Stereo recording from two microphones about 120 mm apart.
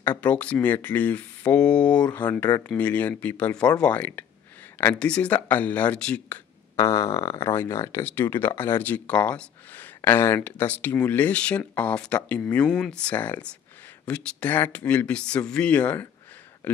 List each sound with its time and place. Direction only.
0.0 s speech: 10° left (ahead or behind)
6.8 s speech: 25° left (ahead or behind)